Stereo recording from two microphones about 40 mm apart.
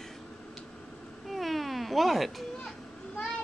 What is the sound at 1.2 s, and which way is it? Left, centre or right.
Cat, centre.